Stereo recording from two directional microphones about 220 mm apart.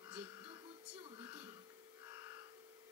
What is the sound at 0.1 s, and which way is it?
Music, 10° right (ahead or behind).